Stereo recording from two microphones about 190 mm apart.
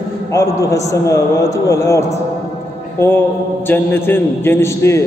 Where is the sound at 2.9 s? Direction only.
10° left (ahead or behind).